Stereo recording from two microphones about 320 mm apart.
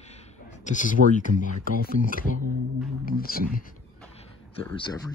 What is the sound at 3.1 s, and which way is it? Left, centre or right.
Speech, left.